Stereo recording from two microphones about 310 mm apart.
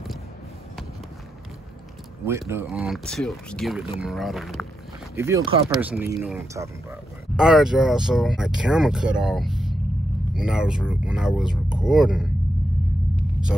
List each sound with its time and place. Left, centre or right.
2.2 s speech: centre